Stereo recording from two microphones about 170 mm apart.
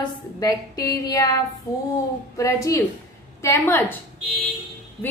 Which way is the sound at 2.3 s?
20° left (ahead or behind).